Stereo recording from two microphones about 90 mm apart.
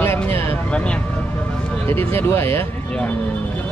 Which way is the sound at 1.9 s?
25° left (ahead or behind).